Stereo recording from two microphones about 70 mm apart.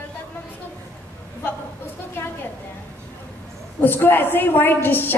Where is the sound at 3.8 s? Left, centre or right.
Left.